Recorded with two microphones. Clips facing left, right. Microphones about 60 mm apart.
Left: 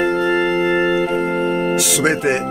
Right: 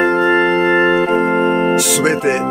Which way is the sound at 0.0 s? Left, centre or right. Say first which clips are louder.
Right 4 dB; right.